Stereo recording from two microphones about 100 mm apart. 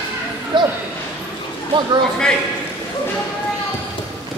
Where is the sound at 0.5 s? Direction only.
50° right (ahead or behind).